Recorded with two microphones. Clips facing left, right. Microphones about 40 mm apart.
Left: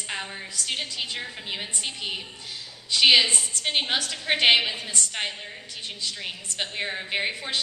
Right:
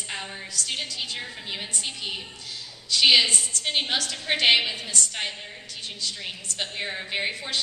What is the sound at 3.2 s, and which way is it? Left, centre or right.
Speech, left.